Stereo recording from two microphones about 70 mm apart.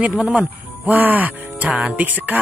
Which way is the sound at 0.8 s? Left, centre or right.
Right.